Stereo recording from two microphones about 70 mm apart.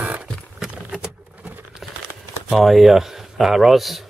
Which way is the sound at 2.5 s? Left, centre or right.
Centre.